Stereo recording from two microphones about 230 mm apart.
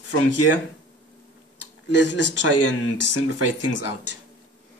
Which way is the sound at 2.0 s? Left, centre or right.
Left.